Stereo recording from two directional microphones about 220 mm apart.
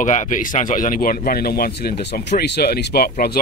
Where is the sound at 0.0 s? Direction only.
35° left (ahead or behind).